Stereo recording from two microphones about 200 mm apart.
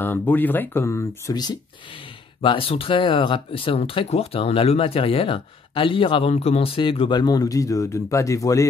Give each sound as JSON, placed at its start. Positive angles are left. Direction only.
{"t": 0.0, "sound": "speech", "side_deg": 10}